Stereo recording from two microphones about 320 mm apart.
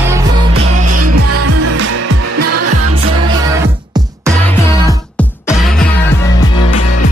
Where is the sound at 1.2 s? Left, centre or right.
Right.